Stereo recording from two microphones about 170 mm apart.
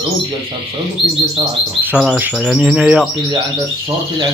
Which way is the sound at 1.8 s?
5° right (ahead or behind).